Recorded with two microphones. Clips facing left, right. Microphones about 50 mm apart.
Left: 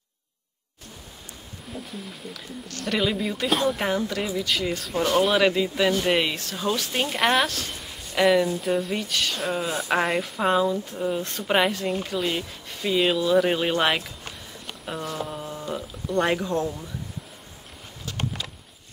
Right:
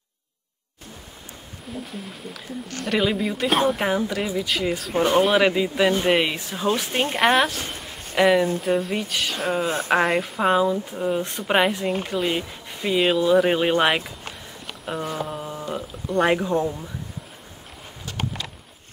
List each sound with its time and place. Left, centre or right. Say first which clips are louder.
1.7 s speech: right 3 dB; centre
4.9 s speech: right 3 dB; right
5.2 s speech: right 2 dB; centre
7.2 s speech: right 3 dB; centre
8.5 s speech: right 2 dB; centre